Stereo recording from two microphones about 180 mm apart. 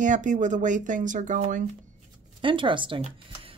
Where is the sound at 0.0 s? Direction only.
45° right (ahead or behind).